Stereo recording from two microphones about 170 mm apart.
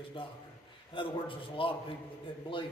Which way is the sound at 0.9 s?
30° left (ahead or behind).